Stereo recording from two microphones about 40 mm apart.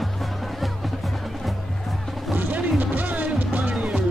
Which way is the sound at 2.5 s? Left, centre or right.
Right.